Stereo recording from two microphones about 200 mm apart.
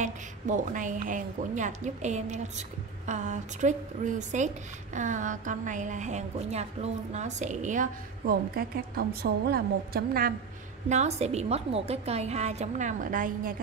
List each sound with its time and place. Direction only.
0.0 s a woman's voice: 40° right (ahead or behind)
10.9 s a woman's voice: 35° right (ahead or behind)